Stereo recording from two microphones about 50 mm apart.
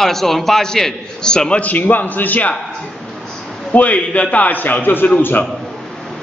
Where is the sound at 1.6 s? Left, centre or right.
Left.